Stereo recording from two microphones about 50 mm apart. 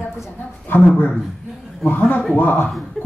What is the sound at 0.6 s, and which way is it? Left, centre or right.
Speech, left.